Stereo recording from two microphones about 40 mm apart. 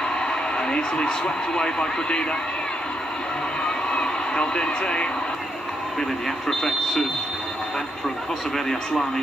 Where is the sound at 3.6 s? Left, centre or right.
Left.